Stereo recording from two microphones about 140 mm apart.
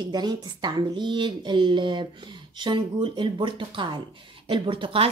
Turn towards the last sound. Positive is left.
turn(degrees=-40)  # may be behind; listen again after turning